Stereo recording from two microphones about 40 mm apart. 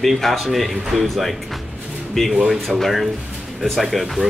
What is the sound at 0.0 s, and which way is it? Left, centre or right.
Speech, centre.